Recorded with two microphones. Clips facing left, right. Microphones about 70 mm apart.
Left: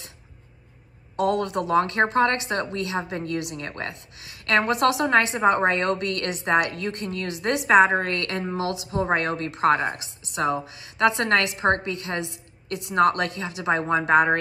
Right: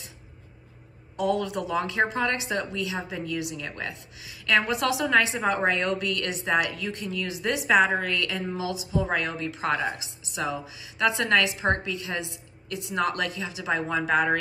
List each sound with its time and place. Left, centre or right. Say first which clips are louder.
1.1 s a woman's voice: left 3 dB; left
7.8 s a woman's voice: left 4 dB; left
13.8 s speech: left 5 dB; left